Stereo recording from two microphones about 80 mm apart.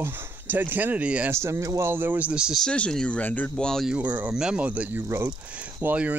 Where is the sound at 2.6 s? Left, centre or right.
Centre.